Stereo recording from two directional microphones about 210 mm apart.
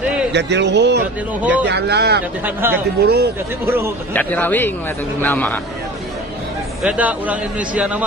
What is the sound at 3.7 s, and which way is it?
Speech, 10° right (ahead or behind).